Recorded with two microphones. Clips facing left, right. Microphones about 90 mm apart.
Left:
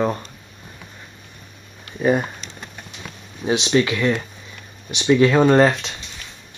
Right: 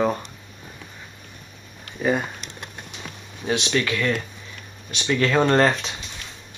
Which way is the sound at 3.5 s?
20° left (ahead or behind).